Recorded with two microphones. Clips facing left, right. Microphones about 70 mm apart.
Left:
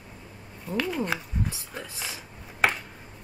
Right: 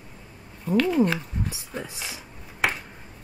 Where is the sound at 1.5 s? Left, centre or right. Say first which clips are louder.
Right 3 dB; centre.